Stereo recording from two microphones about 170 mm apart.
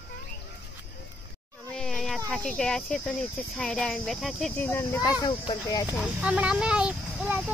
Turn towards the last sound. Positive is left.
turn(degrees=-5)  # may be behind; listen again after turning